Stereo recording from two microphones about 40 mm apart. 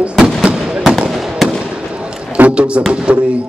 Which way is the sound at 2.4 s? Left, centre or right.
Right.